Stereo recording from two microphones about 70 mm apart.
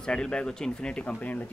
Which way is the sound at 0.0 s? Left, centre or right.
Centre.